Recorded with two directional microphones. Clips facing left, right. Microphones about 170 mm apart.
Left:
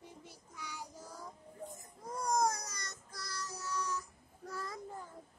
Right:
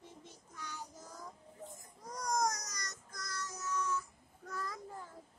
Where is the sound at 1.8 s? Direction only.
25° left (ahead or behind).